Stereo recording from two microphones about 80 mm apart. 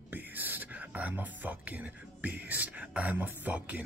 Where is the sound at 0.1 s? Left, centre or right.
Right.